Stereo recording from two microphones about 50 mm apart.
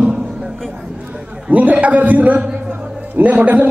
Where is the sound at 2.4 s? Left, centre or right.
Centre.